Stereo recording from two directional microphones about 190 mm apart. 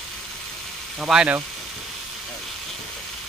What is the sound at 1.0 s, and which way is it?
Speech, 5° right (ahead or behind).